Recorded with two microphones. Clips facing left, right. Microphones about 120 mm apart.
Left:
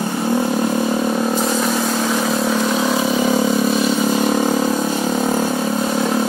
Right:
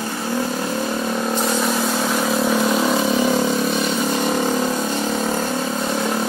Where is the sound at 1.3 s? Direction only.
Centre (ahead or behind).